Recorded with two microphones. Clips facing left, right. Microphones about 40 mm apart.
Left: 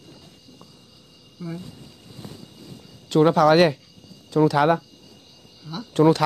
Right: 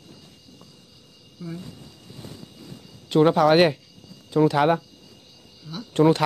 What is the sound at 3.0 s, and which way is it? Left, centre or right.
Speech, centre.